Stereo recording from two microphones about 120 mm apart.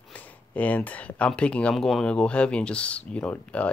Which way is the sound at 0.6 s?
15° left (ahead or behind).